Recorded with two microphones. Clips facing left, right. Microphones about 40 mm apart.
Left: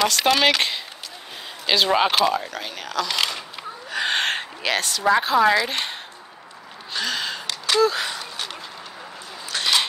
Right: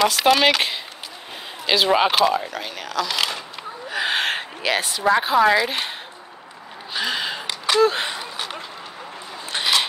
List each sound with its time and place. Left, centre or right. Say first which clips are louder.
0.0 s a woman's voice: right 2 dB; centre
6.9 s gasp: right 2 dB; centre
7.8 s speech: right 2 dB; right
8.1 s a sound: right 2 dB; centre